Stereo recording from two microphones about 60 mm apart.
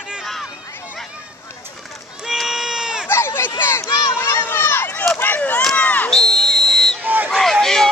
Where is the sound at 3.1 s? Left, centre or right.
Left.